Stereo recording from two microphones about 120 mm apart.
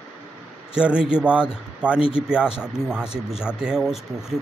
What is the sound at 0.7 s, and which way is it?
A man's voice, 10° right (ahead or behind).